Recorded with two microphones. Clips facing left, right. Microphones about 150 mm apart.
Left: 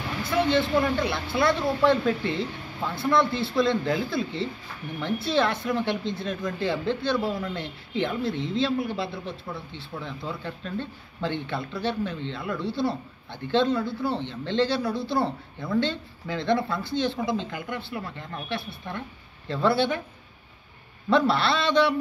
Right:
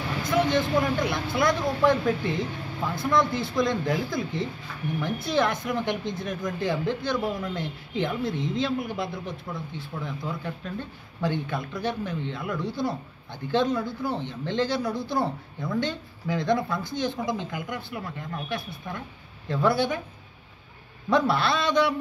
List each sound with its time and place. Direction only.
0.5 s a woman's voice: 15° right (ahead or behind)
21.1 s speech: 15° right (ahead or behind)